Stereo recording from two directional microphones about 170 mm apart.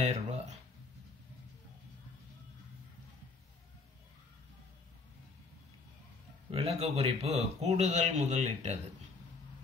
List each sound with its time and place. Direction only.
0.0 s speech: 40° right (ahead or behind)
6.5 s a man's voice: 35° right (ahead or behind)